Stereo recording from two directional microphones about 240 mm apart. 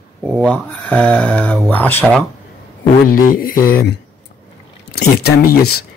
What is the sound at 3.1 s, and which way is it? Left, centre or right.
Speech, left.